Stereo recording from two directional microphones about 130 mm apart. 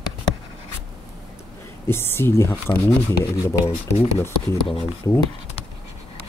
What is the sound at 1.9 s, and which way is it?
Speech, 20° left (ahead or behind).